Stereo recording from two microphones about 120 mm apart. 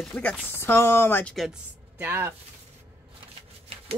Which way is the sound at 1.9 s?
20° right (ahead or behind).